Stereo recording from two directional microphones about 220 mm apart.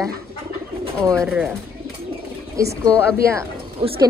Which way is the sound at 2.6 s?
15° right (ahead or behind).